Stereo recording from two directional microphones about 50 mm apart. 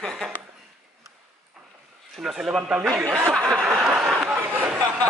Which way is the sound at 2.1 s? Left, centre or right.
Centre.